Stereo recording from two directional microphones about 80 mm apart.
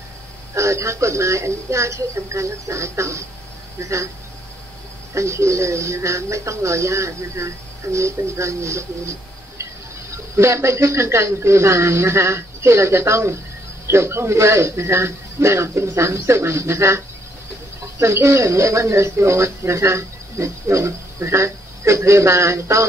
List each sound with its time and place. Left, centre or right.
0.6 s speech: right
5.1 s speech: right
10.1 s speech: right